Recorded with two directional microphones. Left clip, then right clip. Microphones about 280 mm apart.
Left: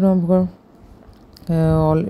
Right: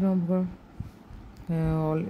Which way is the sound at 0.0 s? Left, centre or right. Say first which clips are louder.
Left 11 dB; centre.